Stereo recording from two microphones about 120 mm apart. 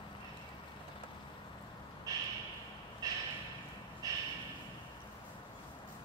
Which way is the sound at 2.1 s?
30° right (ahead or behind).